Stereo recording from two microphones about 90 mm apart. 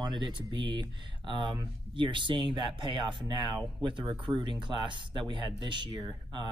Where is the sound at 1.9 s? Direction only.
65° right (ahead or behind).